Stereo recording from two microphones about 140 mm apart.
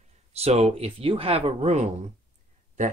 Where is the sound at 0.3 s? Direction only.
50° right (ahead or behind).